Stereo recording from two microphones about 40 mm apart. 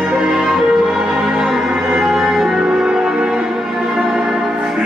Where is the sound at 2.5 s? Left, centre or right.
Right.